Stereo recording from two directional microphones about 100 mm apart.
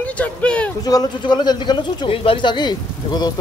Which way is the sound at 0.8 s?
40° left (ahead or behind).